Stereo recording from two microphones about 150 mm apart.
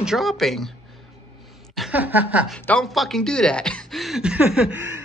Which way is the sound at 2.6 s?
10° left (ahead or behind).